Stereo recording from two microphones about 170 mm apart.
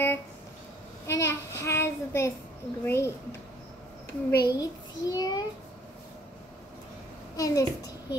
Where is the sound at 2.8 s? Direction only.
15° left (ahead or behind).